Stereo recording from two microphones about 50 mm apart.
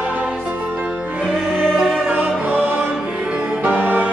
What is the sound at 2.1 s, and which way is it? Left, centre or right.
Music, right.